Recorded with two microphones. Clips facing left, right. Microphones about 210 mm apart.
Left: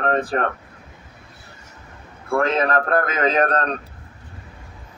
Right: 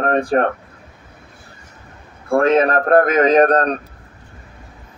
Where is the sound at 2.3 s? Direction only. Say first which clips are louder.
Right 5 dB; 40° right (ahead or behind).